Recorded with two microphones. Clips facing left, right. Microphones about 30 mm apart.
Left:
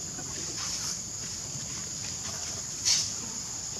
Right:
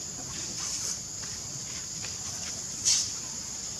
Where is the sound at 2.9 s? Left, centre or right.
Left.